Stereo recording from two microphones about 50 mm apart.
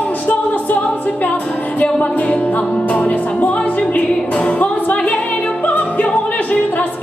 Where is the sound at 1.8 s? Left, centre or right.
Left.